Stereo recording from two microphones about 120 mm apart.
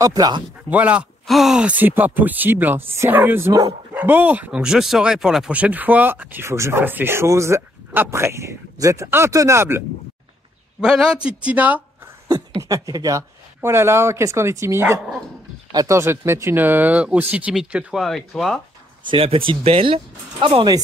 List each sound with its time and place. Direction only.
0.0 s speech: 35° right (ahead or behind)
0.7 s speech: 10° right (ahead or behind)
1.2 s speech: centre (ahead or behind); by 9.8 s 20° right (ahead or behind)
10.8 s speech: 5° right (ahead or behind)
12.3 s speech: 30° right (ahead or behind); by 18.6 s 5° left (ahead or behind)
19.0 s speech: 50° right (ahead or behind)